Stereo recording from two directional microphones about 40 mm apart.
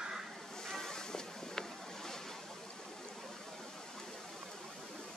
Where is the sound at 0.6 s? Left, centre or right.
Centre.